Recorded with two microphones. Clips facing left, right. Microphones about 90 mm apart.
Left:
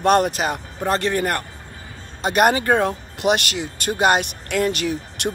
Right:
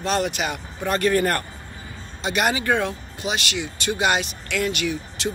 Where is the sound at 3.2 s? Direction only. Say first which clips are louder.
Left 7 dB; 55° left (ahead or behind); by 4.9 s 40° left (ahead or behind).